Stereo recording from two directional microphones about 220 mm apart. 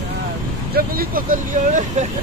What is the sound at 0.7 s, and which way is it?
Speech, 40° right (ahead or behind).